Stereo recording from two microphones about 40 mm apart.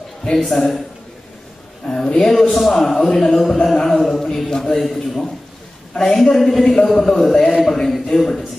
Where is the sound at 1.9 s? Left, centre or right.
Centre.